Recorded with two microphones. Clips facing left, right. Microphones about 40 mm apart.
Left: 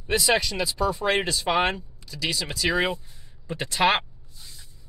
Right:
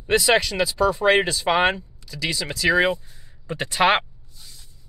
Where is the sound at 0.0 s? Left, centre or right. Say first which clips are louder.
Right 4 dB; right.